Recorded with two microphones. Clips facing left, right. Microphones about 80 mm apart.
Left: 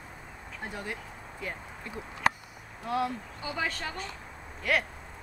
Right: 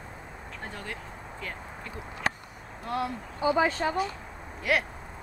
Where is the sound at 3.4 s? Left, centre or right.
Right.